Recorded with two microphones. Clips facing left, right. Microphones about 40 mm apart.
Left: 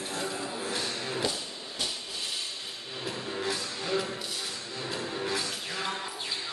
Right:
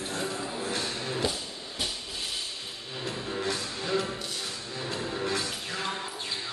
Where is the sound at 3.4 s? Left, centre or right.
Centre.